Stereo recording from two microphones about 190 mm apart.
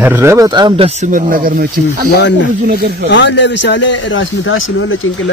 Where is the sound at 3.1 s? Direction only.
70° left (ahead or behind).